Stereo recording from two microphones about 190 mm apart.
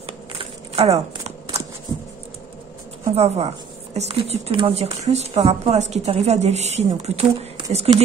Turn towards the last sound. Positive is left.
turn(degrees=-35)  # may be behind; listen again after turning